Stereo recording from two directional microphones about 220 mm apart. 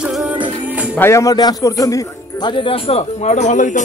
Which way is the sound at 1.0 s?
15° left (ahead or behind).